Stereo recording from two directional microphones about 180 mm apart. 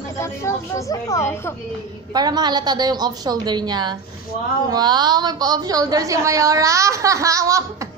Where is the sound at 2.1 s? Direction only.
20° right (ahead or behind).